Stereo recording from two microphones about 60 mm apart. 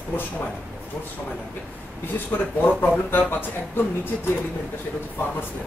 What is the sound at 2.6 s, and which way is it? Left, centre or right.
Speech, left.